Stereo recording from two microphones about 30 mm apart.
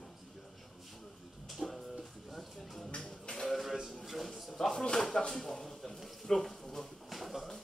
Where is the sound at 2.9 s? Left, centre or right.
Left.